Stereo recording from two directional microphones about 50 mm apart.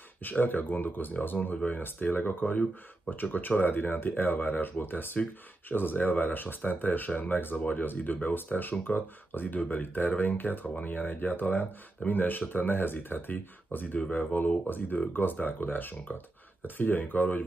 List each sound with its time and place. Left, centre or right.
0.2 s speech: left